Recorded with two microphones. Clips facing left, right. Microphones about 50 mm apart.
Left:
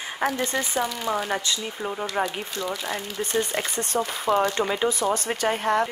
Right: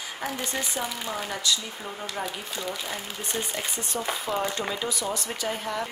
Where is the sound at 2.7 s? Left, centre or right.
Centre.